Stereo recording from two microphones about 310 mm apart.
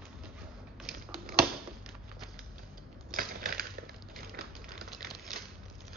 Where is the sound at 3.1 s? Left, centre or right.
Right.